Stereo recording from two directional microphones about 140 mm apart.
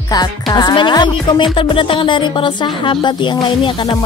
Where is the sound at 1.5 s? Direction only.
40° left (ahead or behind).